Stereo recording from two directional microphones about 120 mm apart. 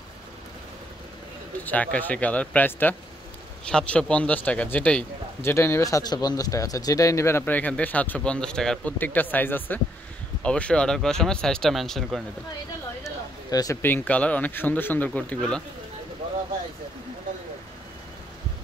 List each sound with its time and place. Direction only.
1.6 s a man's voice: 15° left (ahead or behind)
5.5 s a man's voice: 20° left (ahead or behind); by 12.2 s centre (ahead or behind)
13.0 s a sound: 30° left (ahead or behind)
13.8 s a man's voice: 15° left (ahead or behind)